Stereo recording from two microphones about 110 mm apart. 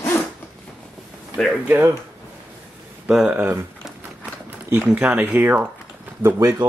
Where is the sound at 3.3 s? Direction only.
20° right (ahead or behind).